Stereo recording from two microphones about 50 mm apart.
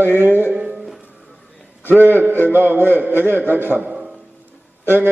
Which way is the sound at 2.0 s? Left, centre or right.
Right.